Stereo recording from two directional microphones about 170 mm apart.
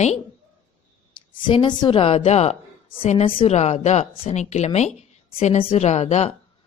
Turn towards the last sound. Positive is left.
turn(degrees=40)  # may be behind; listen again after turning